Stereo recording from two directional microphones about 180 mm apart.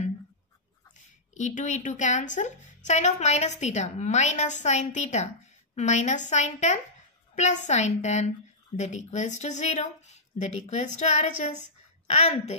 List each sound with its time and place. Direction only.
1.3 s a woman's voice: 45° left (ahead or behind)